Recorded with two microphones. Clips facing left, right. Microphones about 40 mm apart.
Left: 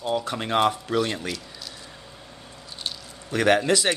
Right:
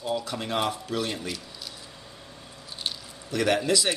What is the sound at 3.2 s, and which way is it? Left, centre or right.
Speech, left.